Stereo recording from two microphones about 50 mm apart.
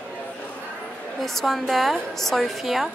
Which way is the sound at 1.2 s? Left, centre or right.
Centre.